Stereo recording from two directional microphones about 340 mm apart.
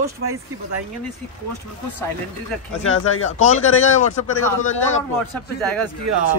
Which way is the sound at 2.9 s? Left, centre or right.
Left.